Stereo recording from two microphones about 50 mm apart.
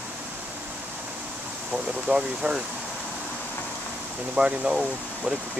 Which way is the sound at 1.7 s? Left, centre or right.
Centre.